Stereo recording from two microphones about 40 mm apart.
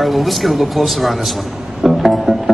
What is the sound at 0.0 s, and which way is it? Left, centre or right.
A man's voice, centre.